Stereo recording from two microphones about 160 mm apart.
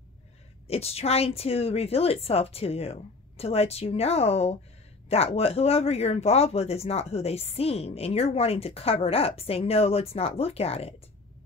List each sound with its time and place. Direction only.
0.7 s speech: 40° left (ahead or behind)